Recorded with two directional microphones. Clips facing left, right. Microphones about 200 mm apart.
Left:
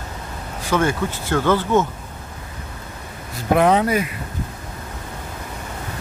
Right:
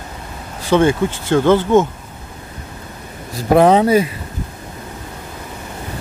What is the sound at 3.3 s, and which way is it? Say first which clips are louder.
Speech: right 5 dB; 35° right (ahead or behind).